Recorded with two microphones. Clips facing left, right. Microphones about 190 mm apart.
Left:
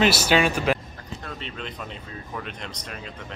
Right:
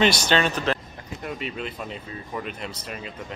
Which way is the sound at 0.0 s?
5° left (ahead or behind).